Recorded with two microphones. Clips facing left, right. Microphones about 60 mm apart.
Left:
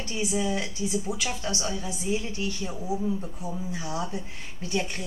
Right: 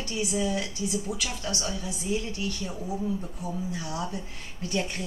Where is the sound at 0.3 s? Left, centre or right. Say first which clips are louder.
Left 1 dB; centre.